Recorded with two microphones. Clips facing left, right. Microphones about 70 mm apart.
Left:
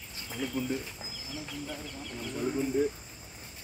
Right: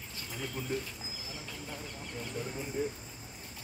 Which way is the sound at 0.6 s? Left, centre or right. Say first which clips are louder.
Left 9 dB; right.